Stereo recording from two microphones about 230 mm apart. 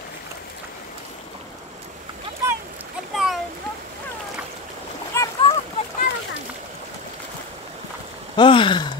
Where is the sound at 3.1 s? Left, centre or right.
Centre.